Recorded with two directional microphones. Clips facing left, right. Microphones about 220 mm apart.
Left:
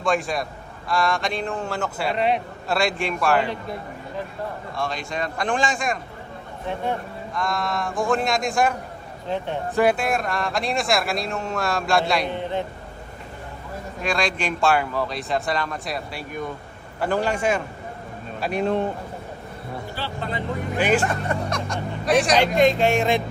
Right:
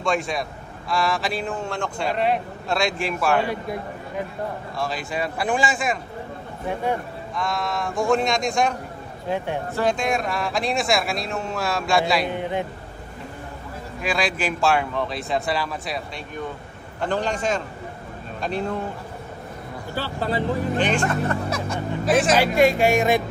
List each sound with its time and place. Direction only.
0.0 s a man's voice: centre (ahead or behind)
4.7 s a man's voice: 5° right (ahead or behind)
12.4 s a man's voice: 15° right (ahead or behind)
14.0 s a man's voice: 5° right (ahead or behind)
17.0 s a man's voice: 10° left (ahead or behind)
20.0 s speech: 35° right (ahead or behind)
20.7 s a man's voice: 5° left (ahead or behind)